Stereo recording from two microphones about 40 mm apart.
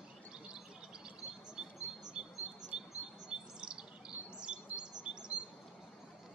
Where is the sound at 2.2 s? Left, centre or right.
Right.